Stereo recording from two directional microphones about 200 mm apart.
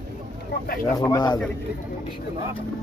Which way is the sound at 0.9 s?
15° left (ahead or behind).